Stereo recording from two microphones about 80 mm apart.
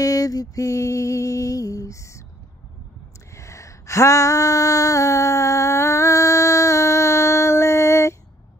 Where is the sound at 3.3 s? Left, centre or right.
Left.